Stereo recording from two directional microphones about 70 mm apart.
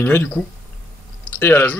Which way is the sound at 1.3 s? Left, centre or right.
Left.